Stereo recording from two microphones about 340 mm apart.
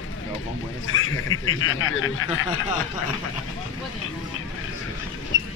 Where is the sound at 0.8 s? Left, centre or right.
Left.